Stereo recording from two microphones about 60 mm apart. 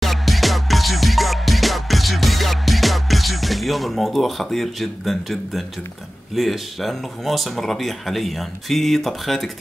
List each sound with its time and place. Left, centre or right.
0.0 s music: centre
6.3 s speech: centre